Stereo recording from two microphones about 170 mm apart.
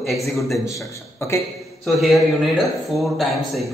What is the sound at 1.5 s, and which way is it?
A man's voice, centre (ahead or behind).